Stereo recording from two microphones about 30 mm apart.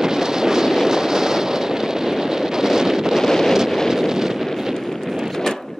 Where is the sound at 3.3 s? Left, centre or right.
Centre.